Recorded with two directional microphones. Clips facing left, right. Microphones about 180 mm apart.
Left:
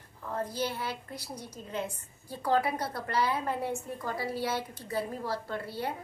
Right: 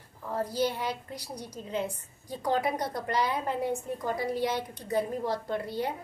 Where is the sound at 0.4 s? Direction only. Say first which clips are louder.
Right 4 dB; 10° right (ahead or behind).